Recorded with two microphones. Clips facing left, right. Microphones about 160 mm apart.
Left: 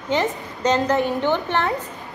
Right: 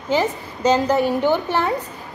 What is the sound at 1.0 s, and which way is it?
Speech, 40° right (ahead or behind).